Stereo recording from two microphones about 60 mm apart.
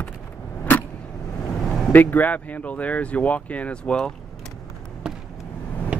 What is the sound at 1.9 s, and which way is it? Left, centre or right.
Speech, left.